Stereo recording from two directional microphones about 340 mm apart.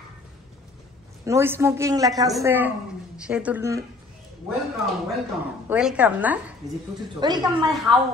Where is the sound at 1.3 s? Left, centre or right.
Centre.